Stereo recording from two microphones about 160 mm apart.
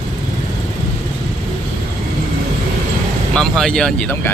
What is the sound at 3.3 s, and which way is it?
Speech, 5° left (ahead or behind).